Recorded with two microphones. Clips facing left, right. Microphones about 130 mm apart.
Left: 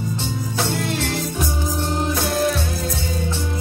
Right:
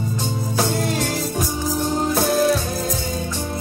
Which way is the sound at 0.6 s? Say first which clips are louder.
Right 2 dB; 40° right (ahead or behind).